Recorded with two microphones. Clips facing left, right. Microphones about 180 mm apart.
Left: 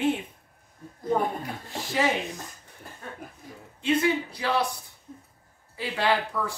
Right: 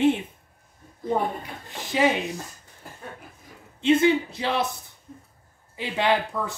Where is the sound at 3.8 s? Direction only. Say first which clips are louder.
Right 5 dB; 25° right (ahead or behind).